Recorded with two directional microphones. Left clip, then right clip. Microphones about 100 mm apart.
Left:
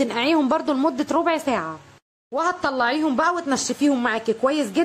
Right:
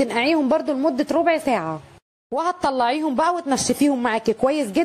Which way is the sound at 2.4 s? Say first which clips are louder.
Right 1 dB; 60° right (ahead or behind).